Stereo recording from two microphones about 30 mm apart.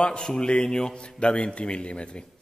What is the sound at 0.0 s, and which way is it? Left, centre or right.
A man's voice, left.